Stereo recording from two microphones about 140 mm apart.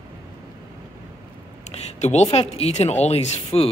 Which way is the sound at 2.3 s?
45° left (ahead or behind).